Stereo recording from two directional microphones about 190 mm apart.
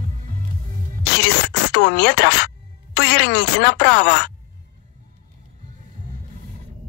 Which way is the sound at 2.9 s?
60° left (ahead or behind).